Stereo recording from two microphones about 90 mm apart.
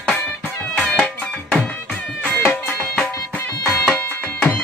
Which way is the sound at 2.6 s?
20° left (ahead or behind).